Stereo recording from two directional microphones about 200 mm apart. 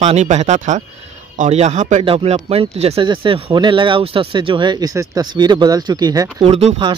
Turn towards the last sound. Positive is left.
turn(degrees=-25)  # may be behind; listen again after turning